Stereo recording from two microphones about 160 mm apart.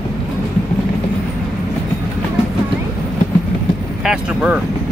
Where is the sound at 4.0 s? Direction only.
5° right (ahead or behind).